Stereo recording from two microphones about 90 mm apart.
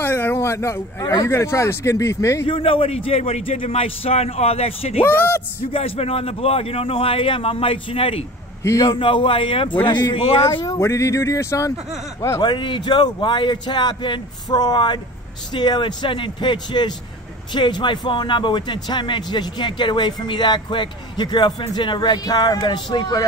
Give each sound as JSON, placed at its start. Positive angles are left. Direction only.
{"t": 0.0, "sound": "speech", "side_deg": 25}
{"t": 2.4, "sound": "a man's voice", "side_deg": 90}
{"t": 5.0, "sound": "speech", "side_deg": 25}
{"t": 5.7, "sound": "a man's voice", "side_deg": 90}
{"t": 8.9, "sound": "a man's voice", "side_deg": 75}
{"t": 9.8, "sound": "speech", "side_deg": 55}
{"t": 10.1, "sound": "speech", "side_deg": 90}
{"t": 10.7, "sound": "speech", "side_deg": 35}
{"t": 12.4, "sound": "speech", "side_deg": 60}